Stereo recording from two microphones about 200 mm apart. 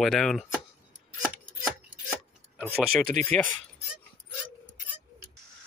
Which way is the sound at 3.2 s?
35° right (ahead or behind).